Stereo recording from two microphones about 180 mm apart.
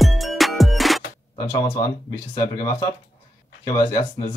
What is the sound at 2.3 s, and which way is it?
Speech, 20° left (ahead or behind).